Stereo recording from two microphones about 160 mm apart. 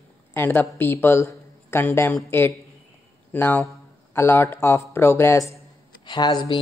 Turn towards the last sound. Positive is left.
turn(degrees=25)  # may be behind; listen again after turning